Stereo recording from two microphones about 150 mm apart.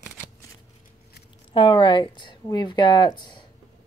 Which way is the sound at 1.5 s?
35° left (ahead or behind).